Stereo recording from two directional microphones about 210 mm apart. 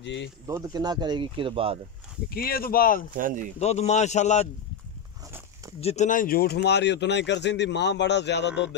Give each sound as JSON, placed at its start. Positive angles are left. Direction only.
{"t": 0.0, "sound": "speech", "side_deg": 55}
{"t": 0.5, "sound": "speech", "side_deg": -15}
{"t": 2.2, "sound": "speech", "side_deg": 45}
{"t": 3.2, "sound": "speech", "side_deg": -40}
{"t": 3.5, "sound": "speech", "side_deg": 30}
{"t": 5.8, "sound": "speech", "side_deg": 30}